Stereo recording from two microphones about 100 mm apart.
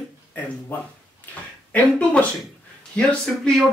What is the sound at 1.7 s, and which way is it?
Speech, 15° left (ahead or behind).